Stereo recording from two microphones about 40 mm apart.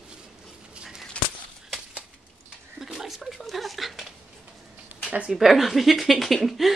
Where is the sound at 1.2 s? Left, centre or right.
Left.